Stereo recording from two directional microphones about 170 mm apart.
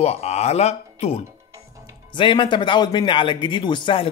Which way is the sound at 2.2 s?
30° left (ahead or behind).